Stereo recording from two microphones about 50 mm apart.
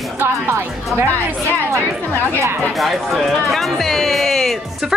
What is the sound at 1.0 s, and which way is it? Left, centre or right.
Speech, left.